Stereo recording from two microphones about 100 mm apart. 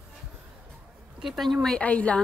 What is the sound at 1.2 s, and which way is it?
Speech, centre (ahead or behind).